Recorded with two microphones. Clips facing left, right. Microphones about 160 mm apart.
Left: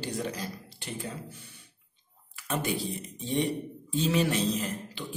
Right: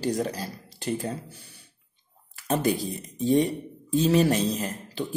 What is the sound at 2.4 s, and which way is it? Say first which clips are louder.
A man's voice: right 6 dB; 35° right (ahead or behind).